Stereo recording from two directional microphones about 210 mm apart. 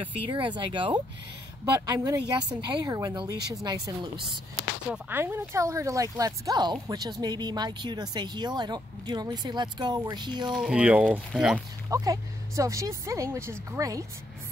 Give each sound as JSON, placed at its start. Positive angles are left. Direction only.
{"t": 0.3, "sound": "speech", "side_deg": -20}
{"t": 4.8, "sound": "speech", "side_deg": -5}
{"t": 10.5, "sound": "speech", "side_deg": 0}
{"t": 11.9, "sound": "speech", "side_deg": -15}